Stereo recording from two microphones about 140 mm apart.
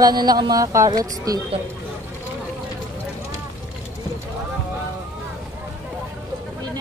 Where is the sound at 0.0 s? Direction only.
30° right (ahead or behind).